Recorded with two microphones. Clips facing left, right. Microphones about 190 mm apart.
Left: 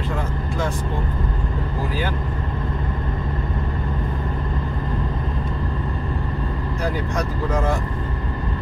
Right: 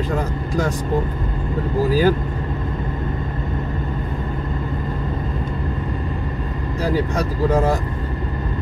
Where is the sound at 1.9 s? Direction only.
40° right (ahead or behind).